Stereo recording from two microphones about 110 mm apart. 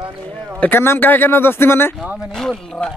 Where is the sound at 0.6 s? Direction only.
20° left (ahead or behind).